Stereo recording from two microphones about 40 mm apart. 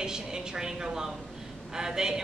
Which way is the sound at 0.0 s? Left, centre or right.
Centre.